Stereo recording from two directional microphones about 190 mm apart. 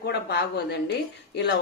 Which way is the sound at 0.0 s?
60° left (ahead or behind).